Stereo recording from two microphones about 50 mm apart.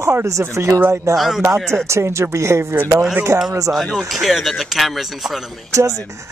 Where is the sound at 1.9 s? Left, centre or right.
Right.